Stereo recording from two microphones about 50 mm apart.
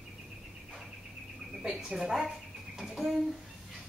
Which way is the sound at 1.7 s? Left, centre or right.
Centre.